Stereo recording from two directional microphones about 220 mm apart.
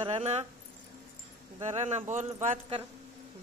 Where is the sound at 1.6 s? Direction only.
30° right (ahead or behind).